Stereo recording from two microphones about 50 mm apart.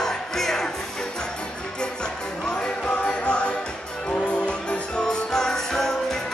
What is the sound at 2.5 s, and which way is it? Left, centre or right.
Music, centre.